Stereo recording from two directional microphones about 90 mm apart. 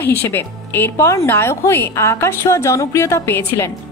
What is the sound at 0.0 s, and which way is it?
A woman's voice, 25° left (ahead or behind).